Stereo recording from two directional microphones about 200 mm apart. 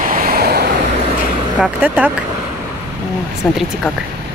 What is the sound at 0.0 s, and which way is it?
Waves, 45° right (ahead or behind).